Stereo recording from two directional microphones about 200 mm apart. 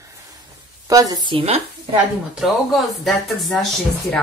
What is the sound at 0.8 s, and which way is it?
Speech, 15° right (ahead or behind).